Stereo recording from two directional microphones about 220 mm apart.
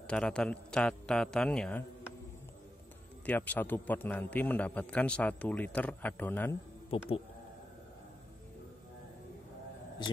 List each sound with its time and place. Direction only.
0.0 s a man's voice: 5° left (ahead or behind)
3.3 s a man's voice: 5° left (ahead or behind)
6.9 s speech: 25° left (ahead or behind)